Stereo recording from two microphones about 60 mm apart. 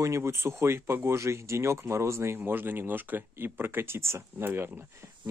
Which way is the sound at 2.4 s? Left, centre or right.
Right.